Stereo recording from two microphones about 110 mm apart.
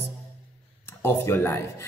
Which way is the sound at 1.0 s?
20° left (ahead or behind).